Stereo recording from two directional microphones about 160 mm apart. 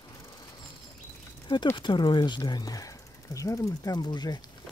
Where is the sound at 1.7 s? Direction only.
30° left (ahead or behind).